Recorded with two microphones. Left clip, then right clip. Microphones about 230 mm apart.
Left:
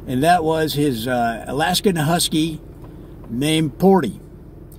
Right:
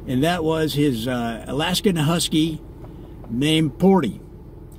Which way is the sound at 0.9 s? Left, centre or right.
Right.